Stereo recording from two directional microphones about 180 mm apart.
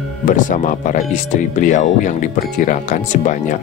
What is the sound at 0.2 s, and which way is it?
Speech, 45° left (ahead or behind).